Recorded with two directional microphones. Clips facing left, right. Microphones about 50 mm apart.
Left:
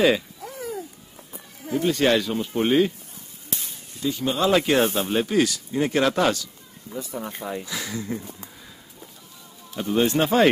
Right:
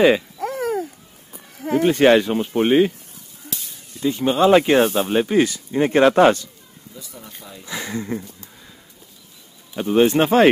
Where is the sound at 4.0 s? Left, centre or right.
Right.